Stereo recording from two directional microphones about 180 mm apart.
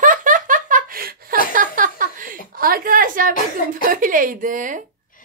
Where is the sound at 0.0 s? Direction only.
45° right (ahead or behind).